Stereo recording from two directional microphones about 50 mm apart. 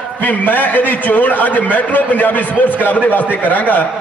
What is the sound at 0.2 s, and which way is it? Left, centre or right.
A man's voice, left.